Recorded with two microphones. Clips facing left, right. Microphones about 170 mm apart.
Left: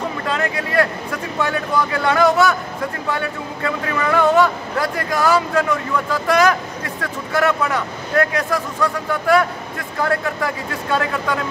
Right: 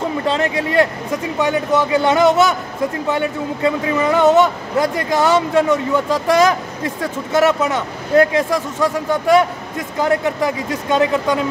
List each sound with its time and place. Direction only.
0.3 s speech: 25° right (ahead or behind)